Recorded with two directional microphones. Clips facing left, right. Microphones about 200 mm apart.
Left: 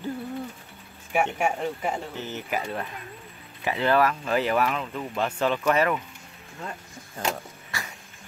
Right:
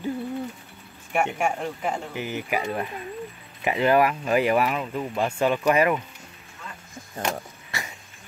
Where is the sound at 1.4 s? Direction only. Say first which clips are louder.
Even; centre (ahead or behind).